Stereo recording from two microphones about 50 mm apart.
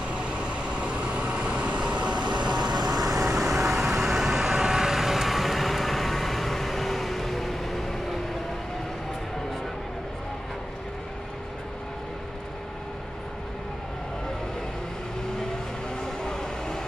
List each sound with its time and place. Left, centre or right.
0.1 s vehicle: right
2.9 s vehicle: centre
16.0 s a sound: centre